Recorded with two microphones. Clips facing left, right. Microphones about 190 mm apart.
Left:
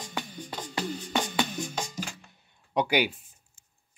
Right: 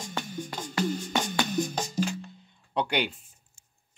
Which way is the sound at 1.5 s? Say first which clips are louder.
Right 5 dB; 35° right (ahead or behind).